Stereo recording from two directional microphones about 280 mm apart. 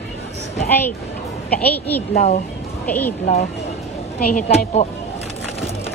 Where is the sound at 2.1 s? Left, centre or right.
Left.